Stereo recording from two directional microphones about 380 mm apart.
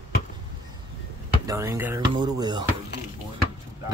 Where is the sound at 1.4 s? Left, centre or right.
Centre.